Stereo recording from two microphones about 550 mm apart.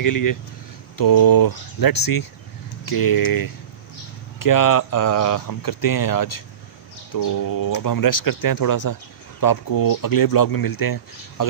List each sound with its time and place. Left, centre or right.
0.0 s speech: left